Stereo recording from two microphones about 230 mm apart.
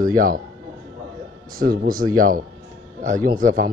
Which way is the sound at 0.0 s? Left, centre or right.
Right.